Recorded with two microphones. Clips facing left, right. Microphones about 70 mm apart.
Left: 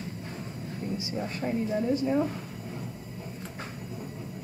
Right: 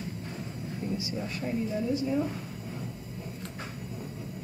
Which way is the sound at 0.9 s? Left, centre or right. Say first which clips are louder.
Left 1 dB; left.